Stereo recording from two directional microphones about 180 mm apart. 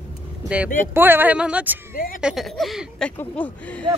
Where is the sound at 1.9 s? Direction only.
55° left (ahead or behind).